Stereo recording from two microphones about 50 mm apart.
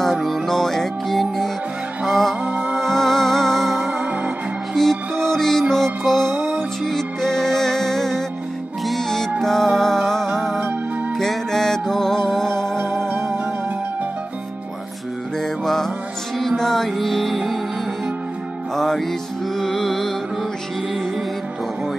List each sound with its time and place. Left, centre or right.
0.0 s music: centre
2.4 s music: right
2.8 s music: centre
15.6 s music: centre
18.8 s music: centre